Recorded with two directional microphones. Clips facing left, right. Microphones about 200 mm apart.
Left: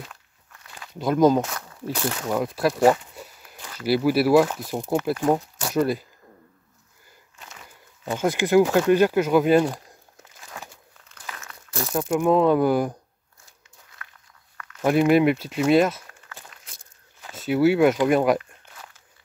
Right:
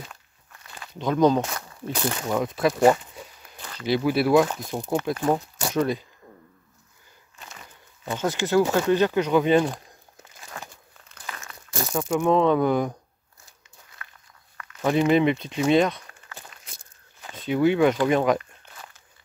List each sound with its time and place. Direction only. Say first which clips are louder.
0.7 s speech: left 2 dB; 5° left (ahead or behind)
7.5 s speech: even; 5° left (ahead or behind)
10.2 s a sound: even; 5° left (ahead or behind)
11.2 s speech: even; centre (ahead or behind)
14.8 s speech: left 2 dB; 5° left (ahead or behind)
16.3 s a sound: right 1 dB; 5° left (ahead or behind)